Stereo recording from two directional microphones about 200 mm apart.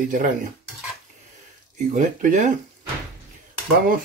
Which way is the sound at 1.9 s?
40° right (ahead or behind).